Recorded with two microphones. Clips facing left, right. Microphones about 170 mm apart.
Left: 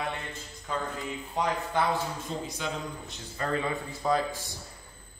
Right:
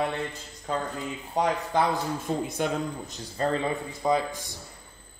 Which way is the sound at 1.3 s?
40° right (ahead or behind).